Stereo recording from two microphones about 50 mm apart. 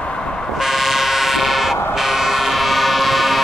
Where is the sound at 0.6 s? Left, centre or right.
Centre.